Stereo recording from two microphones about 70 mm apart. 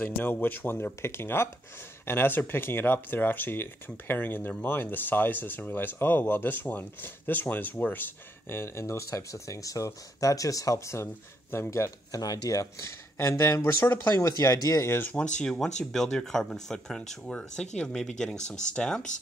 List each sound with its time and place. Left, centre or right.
0.0 s speech: left
12.2 s speech: left
15.1 s speech: centre